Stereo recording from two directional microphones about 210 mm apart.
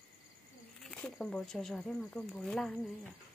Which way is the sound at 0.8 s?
5° left (ahead or behind).